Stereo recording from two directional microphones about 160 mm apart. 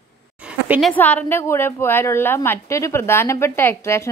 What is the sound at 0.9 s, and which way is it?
Speech, 10° left (ahead or behind).